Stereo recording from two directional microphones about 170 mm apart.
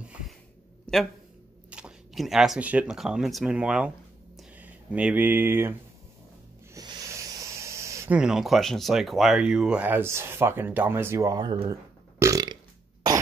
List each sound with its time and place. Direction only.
0.9 s a sound: 5° left (ahead or behind)
1.7 s speech: 5° right (ahead or behind)
6.7 s snake: 20° right (ahead or behind)
8.2 s speech: 5° right (ahead or behind); by 12.5 s 20° right (ahead or behind)